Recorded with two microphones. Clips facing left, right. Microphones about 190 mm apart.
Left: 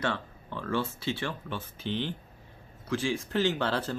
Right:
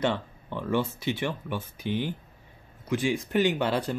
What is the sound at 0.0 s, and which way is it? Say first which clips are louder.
Speech: right 5 dB; 15° right (ahead or behind).